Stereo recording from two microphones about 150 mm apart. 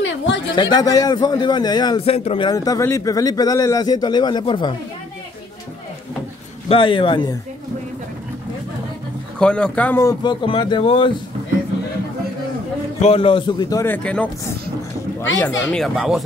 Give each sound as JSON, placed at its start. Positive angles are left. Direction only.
{"t": 0.6, "sound": "speech", "side_deg": 25}
{"t": 2.0, "sound": "speech", "side_deg": 40}
{"t": 2.5, "sound": "speech", "side_deg": 25}
{"t": 6.7, "sound": "speech", "side_deg": 35}
{"t": 9.4, "sound": "speech", "side_deg": 5}
{"t": 10.2, "sound": "speech", "side_deg": 35}
{"t": 13.0, "sound": "speech", "side_deg": 40}
{"t": 13.9, "sound": "speech", "side_deg": 10}
{"t": 15.3, "sound": "speech", "side_deg": 10}